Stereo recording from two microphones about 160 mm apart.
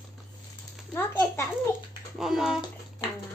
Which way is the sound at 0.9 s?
15° left (ahead or behind).